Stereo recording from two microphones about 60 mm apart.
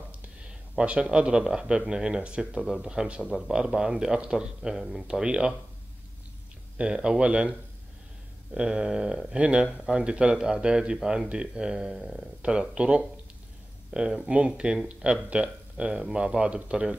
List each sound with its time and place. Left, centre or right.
0.7 s speech: centre
6.8 s speech: centre
8.5 s speech: centre